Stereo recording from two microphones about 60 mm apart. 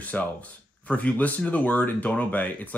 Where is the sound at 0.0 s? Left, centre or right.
Left.